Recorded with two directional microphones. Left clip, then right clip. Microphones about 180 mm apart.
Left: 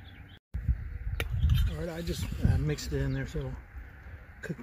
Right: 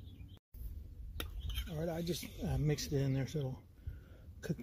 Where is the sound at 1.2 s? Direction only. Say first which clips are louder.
Left 8 dB; 5° right (ahead or behind).